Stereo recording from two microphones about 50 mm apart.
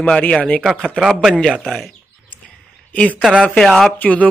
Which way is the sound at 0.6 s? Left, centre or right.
Centre.